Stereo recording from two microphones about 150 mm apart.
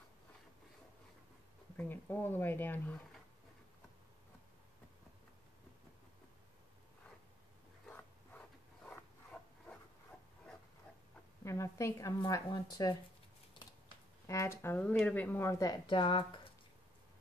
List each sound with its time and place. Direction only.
1.8 s speech: 15° left (ahead or behind)
7.9 s a sound: 10° left (ahead or behind)
11.4 s a woman's voice: 20° left (ahead or behind)
14.2 s speech: 20° left (ahead or behind); by 16.3 s 35° left (ahead or behind)